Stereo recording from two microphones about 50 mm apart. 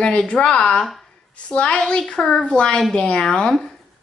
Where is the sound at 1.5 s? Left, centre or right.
Left.